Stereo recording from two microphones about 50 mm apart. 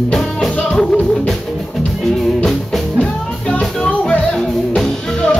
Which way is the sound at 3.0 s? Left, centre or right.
Left.